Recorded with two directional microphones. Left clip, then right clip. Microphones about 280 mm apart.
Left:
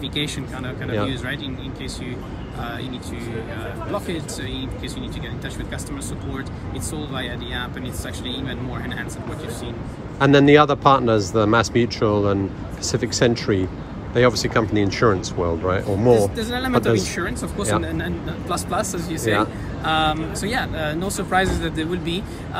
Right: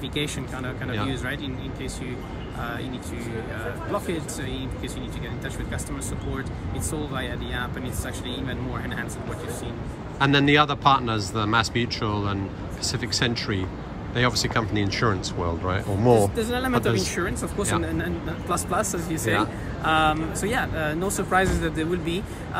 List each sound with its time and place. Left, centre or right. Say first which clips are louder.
0.8 s speech: left 5 dB; centre
7.0 s speech: left 3 dB; centre
10.1 s speech: left 6 dB; centre
18.9 s speech: left 1 dB; right
19.1 s speech: left 4 dB; centre